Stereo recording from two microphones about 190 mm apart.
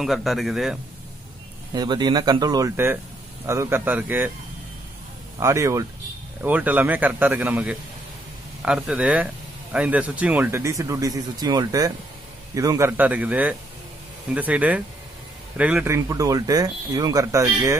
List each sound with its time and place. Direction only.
0.0 s a man's voice: centre (ahead or behind)
1.7 s speech: 20° right (ahead or behind)
5.4 s speech: 15° right (ahead or behind)